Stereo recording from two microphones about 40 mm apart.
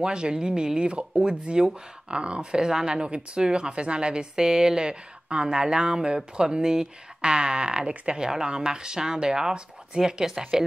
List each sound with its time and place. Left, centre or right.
0.0 s a woman's voice: right